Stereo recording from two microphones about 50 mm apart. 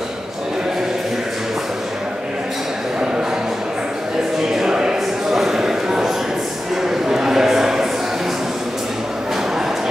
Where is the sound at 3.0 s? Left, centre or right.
Centre.